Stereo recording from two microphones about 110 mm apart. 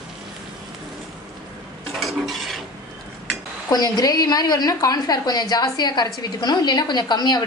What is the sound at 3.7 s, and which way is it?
A woman's voice, 40° left (ahead or behind).